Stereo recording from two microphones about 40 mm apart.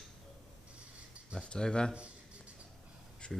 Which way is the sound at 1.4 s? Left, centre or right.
Left.